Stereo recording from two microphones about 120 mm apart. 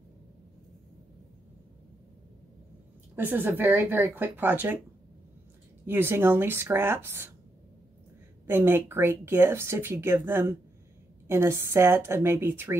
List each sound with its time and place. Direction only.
3.2 s speech: 15° right (ahead or behind)
5.9 s speech: 20° right (ahead or behind)
8.5 s speech: 20° right (ahead or behind)